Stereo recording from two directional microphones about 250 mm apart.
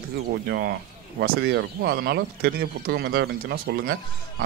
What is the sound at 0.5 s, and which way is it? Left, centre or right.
Speech, right.